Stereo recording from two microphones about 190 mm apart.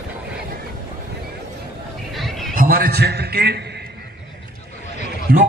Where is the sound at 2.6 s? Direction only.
50° right (ahead or behind).